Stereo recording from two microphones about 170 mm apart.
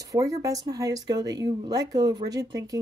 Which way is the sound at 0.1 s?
20° right (ahead or behind).